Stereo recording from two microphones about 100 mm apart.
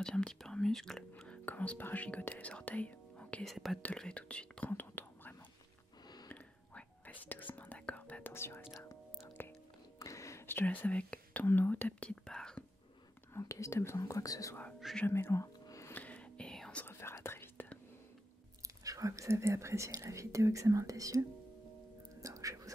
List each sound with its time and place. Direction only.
0.0 s speech: 10° left (ahead or behind)
3.4 s speech: centre (ahead or behind); by 5.3 s 20° left (ahead or behind)
6.2 s whispering: 15° left (ahead or behind)
9.9 s speech: 30° left (ahead or behind); by 12.6 s 5° left (ahead or behind)
13.3 s speech: 30° left (ahead or behind)
15.0 s speech: 25° left (ahead or behind)
15.6 s a sound: 35° left (ahead or behind)
15.9 s whispering: 15° left (ahead or behind)
16.8 s whispering: 25° left (ahead or behind)
18.9 s speech: 35° right (ahead or behind)
22.1 s music: 35° right (ahead or behind)